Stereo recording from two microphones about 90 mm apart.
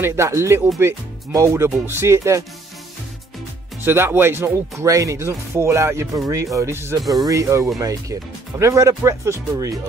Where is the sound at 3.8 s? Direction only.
25° right (ahead or behind).